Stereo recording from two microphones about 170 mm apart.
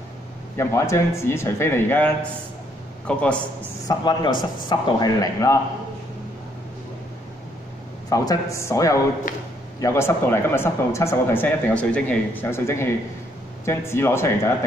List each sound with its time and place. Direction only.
0.6 s speech: 15° left (ahead or behind)
3.8 s a man's voice: 25° left (ahead or behind)
8.1 s a man's voice: 20° left (ahead or behind)